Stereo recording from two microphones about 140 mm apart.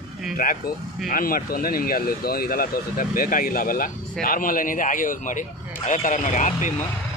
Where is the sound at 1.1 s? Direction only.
85° left; by 6.7 s 60° left (ahead or behind).